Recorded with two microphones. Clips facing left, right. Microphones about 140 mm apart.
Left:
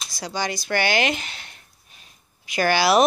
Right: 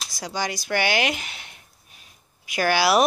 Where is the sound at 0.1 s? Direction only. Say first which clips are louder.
Left 1 dB; 10° right (ahead or behind).